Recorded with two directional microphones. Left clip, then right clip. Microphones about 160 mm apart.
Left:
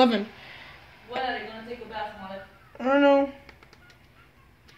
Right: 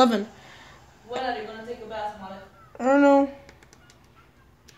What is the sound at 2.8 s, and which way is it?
Speech, 20° right (ahead or behind).